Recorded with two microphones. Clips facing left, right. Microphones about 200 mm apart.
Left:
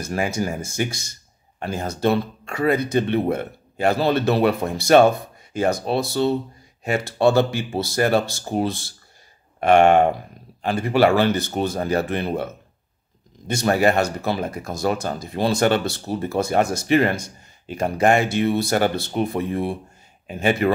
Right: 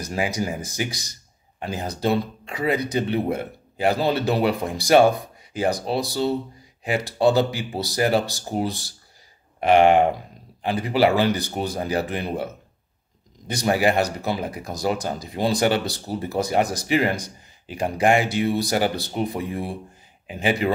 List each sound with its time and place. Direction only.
0.4 s speech: 15° right (ahead or behind)
13.5 s speech: 15° right (ahead or behind)